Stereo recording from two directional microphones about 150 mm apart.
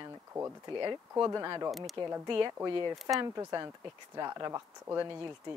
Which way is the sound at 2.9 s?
Centre (ahead or behind).